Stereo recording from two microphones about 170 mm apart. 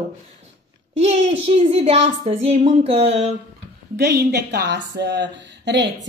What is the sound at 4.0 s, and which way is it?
A woman's voice, 75° right (ahead or behind).